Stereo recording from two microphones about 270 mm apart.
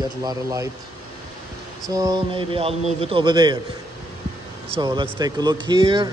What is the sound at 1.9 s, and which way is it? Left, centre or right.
A man's voice, centre.